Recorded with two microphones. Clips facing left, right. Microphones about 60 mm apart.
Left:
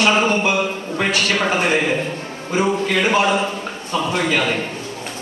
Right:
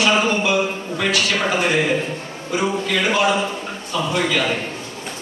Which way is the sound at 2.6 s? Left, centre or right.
Left.